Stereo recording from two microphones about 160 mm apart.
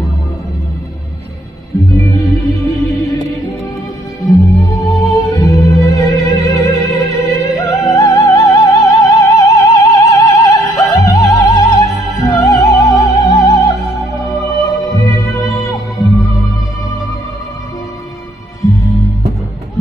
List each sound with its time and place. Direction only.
2.0 s music: 20° left (ahead or behind)
18.6 s music: 20° left (ahead or behind)